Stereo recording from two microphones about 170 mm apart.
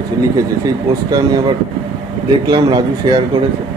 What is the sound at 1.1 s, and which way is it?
Speech, 20° right (ahead or behind).